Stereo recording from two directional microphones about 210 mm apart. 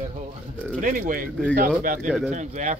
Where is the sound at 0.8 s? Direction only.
40° right (ahead or behind).